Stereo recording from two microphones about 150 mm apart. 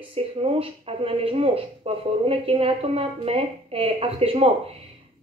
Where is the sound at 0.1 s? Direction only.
40° right (ahead or behind).